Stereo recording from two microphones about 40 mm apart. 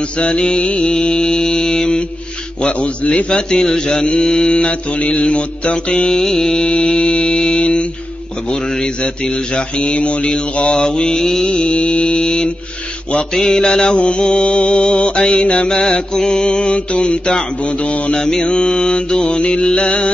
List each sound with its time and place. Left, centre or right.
0.2 s mantra: left
0.8 s mantra: centre
3.3 s mantra: centre
6.1 s music: centre
7.2 s mantra: left
9.8 s speech: left
10.6 s music: centre
11.5 s mantra: left
13.3 s music: centre
13.9 s mantra: left
18.1 s mantra: centre